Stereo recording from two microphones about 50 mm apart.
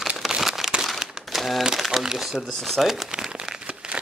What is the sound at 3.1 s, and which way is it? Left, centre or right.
Crumpling, centre.